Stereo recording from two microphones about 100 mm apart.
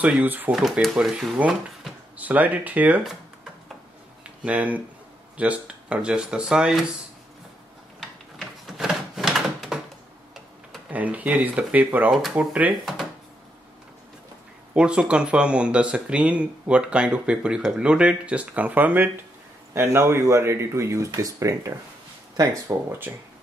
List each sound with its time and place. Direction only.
0.0 s speech: 15° right (ahead or behind)
0.5 s speech: 5° right (ahead or behind)
2.1 s speech: 15° right (ahead or behind)
4.2 s a sound: 10° right (ahead or behind)
5.4 s speech: 10° right (ahead or behind)
8.4 s a sound: centre (ahead or behind)
10.9 s speech: 15° right (ahead or behind)
12.8 s drawer open or close: centre (ahead or behind)
14.7 s speech: 10° right (ahead or behind); by 21.7 s 35° right (ahead or behind)
22.7 s speech: 20° right (ahead or behind)